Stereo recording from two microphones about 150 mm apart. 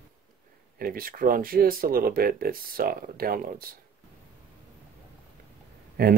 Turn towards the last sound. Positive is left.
turn(degrees=-80)